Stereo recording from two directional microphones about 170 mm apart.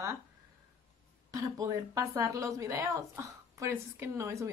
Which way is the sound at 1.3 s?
20° right (ahead or behind).